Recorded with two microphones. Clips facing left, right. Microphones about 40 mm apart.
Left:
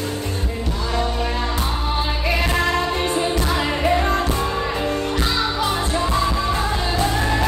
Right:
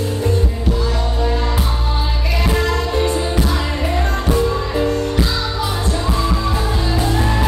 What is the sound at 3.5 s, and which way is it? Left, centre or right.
Music, centre.